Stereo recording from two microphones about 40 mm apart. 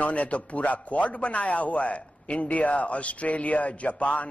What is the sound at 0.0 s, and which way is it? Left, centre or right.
A man's voice, left.